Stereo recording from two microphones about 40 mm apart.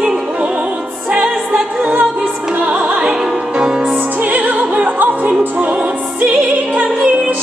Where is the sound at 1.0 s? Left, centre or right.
Right.